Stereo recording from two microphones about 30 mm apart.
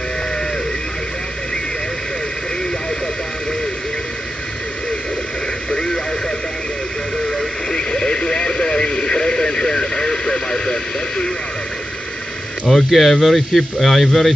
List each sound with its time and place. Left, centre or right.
7.9 s radio: left
12.6 s speech: centre